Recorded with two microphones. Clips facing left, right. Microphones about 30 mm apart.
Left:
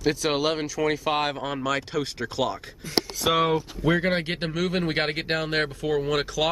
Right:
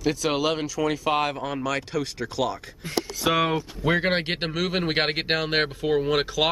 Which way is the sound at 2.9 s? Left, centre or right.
Right.